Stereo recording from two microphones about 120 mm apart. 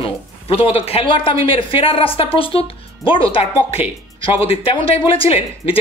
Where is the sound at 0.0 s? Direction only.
50° left (ahead or behind).